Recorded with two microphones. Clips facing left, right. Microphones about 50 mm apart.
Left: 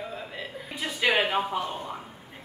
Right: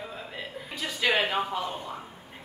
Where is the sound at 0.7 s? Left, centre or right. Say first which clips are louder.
Left 1 dB; centre.